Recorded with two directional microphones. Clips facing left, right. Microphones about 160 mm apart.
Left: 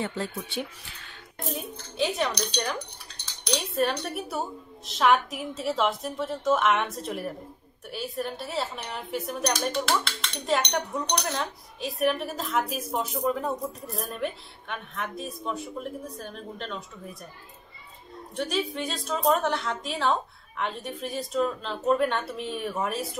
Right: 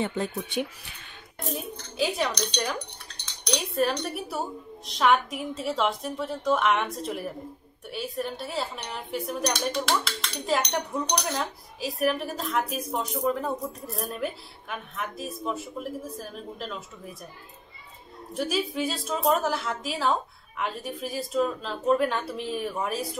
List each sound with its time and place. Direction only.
0.2 s speech: 15° right (ahead or behind)
1.5 s speech: centre (ahead or behind)
18.3 s speech: 5° right (ahead or behind)